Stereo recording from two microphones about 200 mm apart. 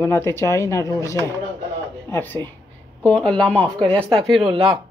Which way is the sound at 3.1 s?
5° left (ahead or behind).